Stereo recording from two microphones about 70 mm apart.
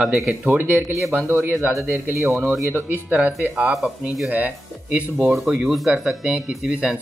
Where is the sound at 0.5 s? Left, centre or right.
Right.